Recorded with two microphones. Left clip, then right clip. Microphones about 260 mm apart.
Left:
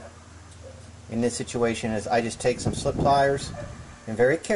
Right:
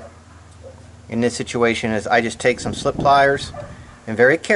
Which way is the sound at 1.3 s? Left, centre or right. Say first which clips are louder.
Right 7 dB; centre.